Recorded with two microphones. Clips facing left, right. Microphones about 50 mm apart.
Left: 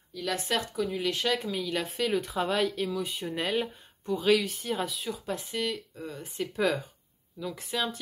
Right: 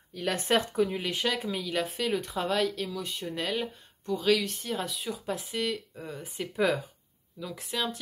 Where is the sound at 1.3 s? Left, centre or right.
Centre.